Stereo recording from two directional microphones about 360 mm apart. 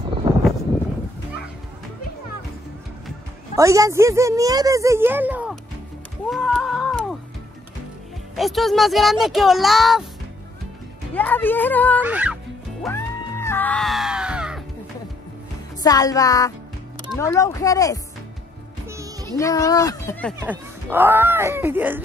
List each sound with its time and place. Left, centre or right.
0.3 s a sound: centre
3.5 s speech: centre
6.3 s music: centre
8.4 s speech: centre
11.1 s speech: centre
12.8 s music: centre
15.8 s speech: centre
18.9 s music: centre
19.3 s speech: centre
20.3 s speech: centre